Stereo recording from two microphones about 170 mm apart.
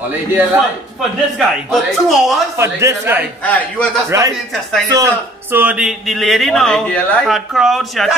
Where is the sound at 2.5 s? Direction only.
15° right (ahead or behind).